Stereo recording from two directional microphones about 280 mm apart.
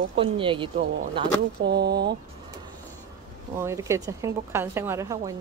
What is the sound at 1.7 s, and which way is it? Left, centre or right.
Speech, right.